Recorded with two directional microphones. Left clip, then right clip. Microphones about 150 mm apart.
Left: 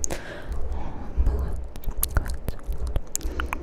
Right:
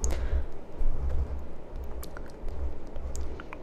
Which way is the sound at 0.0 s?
25° left (ahead or behind).